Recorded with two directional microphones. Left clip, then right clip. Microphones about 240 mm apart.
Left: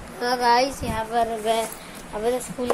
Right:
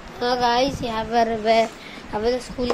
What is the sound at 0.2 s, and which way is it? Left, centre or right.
Speech, centre.